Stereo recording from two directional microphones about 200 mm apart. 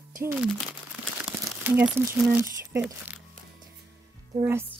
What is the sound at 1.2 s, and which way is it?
Crumpling, 10° right (ahead or behind).